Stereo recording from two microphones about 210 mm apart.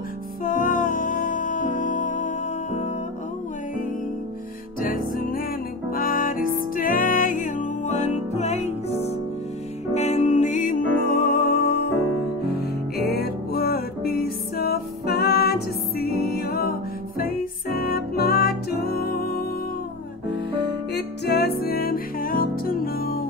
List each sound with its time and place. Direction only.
0.4 s music: 40° left (ahead or behind)
4.8 s music: 40° left (ahead or behind)
20.9 s music: 50° left (ahead or behind)